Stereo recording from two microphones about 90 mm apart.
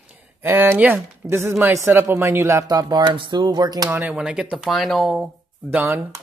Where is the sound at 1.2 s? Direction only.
30° right (ahead or behind); by 3.1 s 45° right (ahead or behind).